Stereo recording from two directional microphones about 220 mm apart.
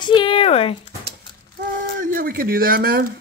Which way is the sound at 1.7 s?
40° right (ahead or behind).